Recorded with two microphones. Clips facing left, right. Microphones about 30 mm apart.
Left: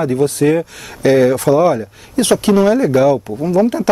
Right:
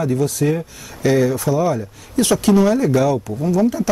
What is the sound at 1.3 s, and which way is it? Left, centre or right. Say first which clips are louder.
Speech: left 6 dB; left.